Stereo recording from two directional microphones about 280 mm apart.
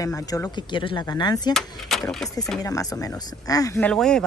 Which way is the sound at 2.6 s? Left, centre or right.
Centre.